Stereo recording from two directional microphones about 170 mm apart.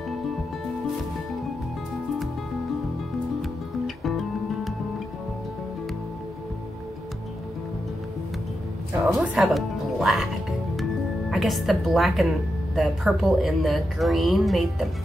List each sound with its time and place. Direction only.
3.8 s music: centre (ahead or behind)
9.0 s speech: 5° right (ahead or behind)
10.8 s music: centre (ahead or behind)
12.7 s a woman's voice: centre (ahead or behind)